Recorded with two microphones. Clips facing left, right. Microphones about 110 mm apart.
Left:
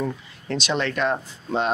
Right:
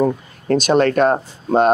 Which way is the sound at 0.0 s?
45° right (ahead or behind).